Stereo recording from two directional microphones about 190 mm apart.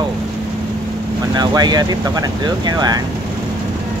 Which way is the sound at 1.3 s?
20° right (ahead or behind).